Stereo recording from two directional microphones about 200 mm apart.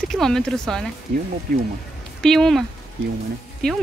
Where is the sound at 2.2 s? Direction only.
Centre (ahead or behind).